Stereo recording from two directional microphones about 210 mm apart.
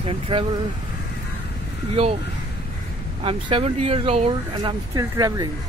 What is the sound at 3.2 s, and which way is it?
Speech, 25° right (ahead or behind).